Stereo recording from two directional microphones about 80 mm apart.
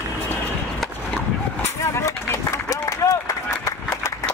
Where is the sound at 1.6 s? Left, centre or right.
Left.